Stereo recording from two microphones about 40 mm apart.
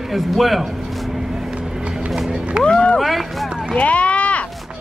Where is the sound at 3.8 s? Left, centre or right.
Left.